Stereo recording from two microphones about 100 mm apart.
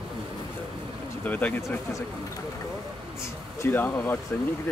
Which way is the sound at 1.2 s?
15° left (ahead or behind).